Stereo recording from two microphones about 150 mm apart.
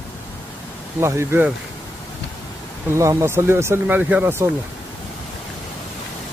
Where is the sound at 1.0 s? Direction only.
15° right (ahead or behind).